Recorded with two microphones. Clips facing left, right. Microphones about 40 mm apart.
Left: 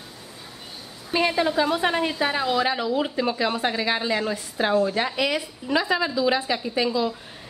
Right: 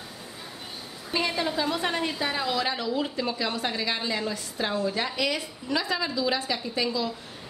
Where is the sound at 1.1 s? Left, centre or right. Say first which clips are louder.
Left 6 dB; left.